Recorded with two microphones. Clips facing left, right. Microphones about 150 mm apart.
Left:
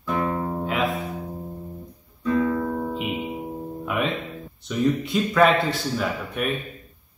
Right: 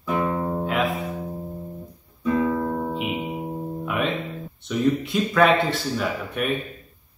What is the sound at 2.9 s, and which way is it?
Music, centre (ahead or behind).